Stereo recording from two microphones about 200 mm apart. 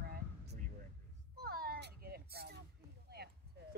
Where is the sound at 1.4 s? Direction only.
50° right (ahead or behind).